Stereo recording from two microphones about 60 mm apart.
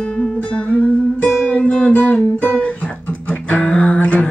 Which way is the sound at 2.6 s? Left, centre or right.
Left.